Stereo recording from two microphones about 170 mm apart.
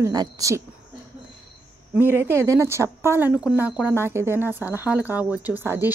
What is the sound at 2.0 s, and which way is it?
Speech, 10° right (ahead or behind).